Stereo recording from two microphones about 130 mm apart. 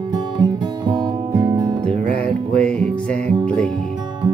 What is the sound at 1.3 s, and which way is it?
Music, 30° right (ahead or behind).